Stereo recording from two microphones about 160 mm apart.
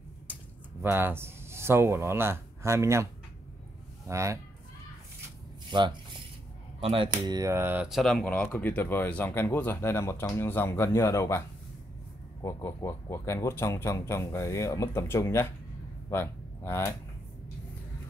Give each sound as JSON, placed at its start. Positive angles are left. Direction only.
{"t": 0.8, "sound": "a man's voice", "side_deg": -15}
{"t": 4.1, "sound": "speech", "side_deg": -20}
{"t": 5.7, "sound": "speech", "side_deg": -30}
{"t": 7.2, "sound": "speech", "side_deg": -20}